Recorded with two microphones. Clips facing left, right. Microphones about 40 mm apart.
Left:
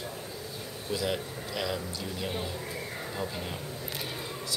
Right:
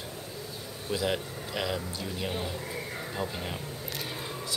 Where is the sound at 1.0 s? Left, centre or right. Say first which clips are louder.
Right 1 dB; centre.